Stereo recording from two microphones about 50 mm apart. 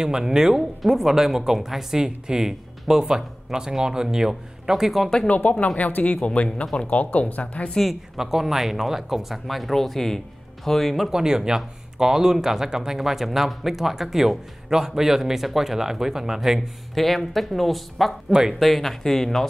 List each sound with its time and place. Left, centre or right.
0.0 s speech: centre
5.3 s speech: left
7.9 s speech: centre
11.1 s speech: centre